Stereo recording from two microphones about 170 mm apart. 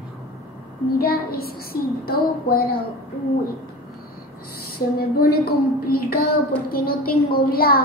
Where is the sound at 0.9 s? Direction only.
60° left (ahead or behind).